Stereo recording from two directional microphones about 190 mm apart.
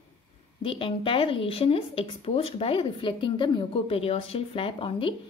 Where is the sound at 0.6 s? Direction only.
30° left (ahead or behind).